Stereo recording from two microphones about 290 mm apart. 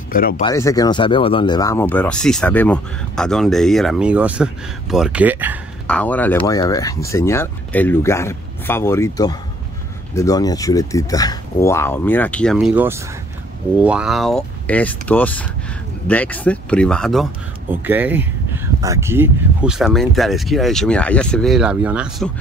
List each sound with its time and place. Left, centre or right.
0.1 s speech: left
0.4 s speech: centre
5.9 s speech: centre